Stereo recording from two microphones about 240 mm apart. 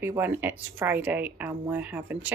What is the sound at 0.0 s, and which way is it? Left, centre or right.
Speech, centre.